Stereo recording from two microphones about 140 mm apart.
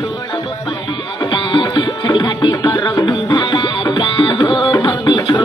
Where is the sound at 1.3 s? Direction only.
30° left (ahead or behind).